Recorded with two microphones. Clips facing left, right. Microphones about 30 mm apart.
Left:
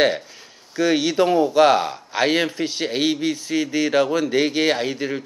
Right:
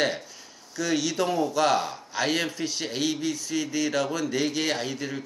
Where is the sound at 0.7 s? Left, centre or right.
Left.